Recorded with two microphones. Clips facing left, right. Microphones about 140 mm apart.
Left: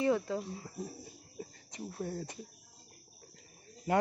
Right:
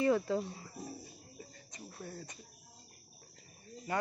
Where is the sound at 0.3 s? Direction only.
5° left (ahead or behind).